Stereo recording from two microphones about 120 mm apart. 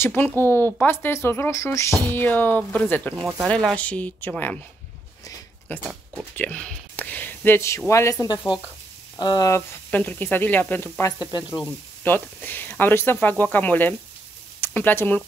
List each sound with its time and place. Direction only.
0.0 s speech: 20° left (ahead or behind)
3.3 s speech: 5° left (ahead or behind)
5.7 s speech: 15° left (ahead or behind)
8.5 s speech: 45° left (ahead or behind)
9.5 s speech: 20° left (ahead or behind)
11.1 s speech: 35° left (ahead or behind)
11.6 s speech: 15° left (ahead or behind)